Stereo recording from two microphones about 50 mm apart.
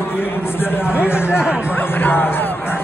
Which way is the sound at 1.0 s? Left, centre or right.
Left.